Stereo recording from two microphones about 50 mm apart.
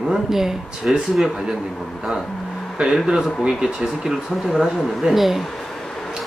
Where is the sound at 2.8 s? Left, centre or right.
Centre.